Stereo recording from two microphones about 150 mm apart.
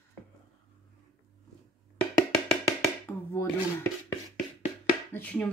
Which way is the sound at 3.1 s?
15° left (ahead or behind).